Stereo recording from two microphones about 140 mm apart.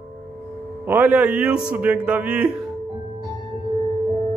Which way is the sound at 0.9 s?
10° right (ahead or behind).